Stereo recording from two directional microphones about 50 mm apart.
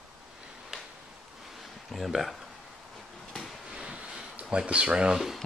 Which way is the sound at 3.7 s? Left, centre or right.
Centre.